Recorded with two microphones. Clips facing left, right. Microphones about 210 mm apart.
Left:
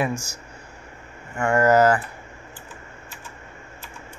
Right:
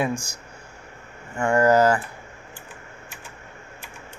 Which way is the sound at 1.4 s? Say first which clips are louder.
Even; 15° right (ahead or behind).